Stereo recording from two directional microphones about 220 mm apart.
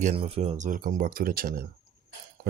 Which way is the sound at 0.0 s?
25° right (ahead or behind).